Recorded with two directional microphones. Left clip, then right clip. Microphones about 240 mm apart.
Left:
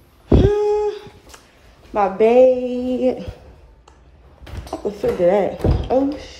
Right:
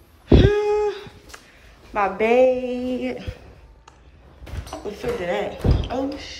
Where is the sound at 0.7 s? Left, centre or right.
Centre.